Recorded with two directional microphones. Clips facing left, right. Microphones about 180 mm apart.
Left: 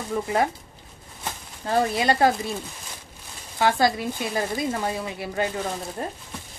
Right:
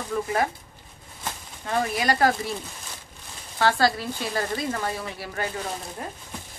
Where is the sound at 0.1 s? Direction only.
20° left (ahead or behind).